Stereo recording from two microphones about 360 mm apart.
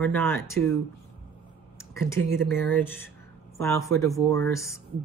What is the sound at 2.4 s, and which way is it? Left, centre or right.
Speech, centre.